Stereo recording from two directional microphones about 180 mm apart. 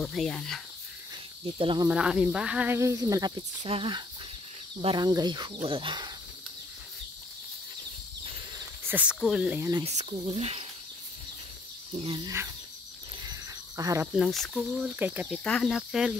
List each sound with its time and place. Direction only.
0.0 s speech: centre (ahead or behind)
1.4 s speech: 30° right (ahead or behind)
1.9 s speech: 5° right (ahead or behind); by 6.1 s 25° right (ahead or behind)
8.5 s speech: 10° right (ahead or behind)
9.8 s speech: 35° right (ahead or behind)
11.9 s speech: 30° right (ahead or behind)
13.2 s a sound: 20° right (ahead or behind)
14.1 s speech: centre (ahead or behind)
15.4 s speech: 5° left (ahead or behind)